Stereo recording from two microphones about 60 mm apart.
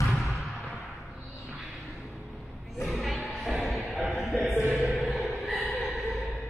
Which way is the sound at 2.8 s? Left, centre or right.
Centre.